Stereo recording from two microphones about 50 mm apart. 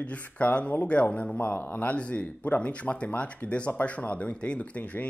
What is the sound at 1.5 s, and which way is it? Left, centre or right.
Speech, left.